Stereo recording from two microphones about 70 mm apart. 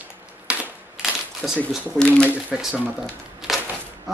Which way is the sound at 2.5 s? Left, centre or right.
Centre.